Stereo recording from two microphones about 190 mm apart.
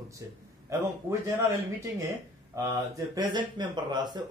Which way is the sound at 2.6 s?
15° right (ahead or behind).